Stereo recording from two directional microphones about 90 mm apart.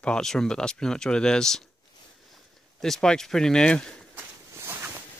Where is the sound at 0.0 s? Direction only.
5° left (ahead or behind).